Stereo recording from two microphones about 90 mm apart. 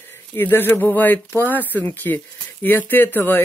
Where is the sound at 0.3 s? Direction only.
25° left (ahead or behind).